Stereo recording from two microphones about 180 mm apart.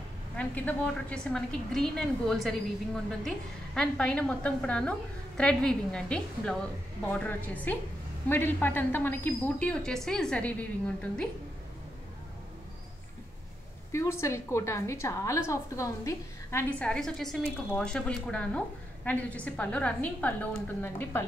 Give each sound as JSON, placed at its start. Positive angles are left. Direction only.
{"t": 0.4, "sound": "a woman's voice", "side_deg": 10}
{"t": 13.9, "sound": "a woman's voice", "side_deg": 15}